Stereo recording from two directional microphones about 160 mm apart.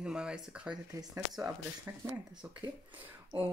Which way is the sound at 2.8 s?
10° right (ahead or behind).